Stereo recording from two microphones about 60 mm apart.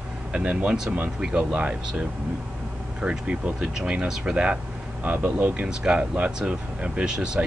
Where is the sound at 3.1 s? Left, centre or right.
Centre.